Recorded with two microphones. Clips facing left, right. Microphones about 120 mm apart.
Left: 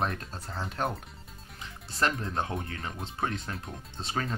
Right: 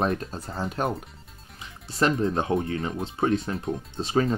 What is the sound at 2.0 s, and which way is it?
Speech, 15° right (ahead or behind).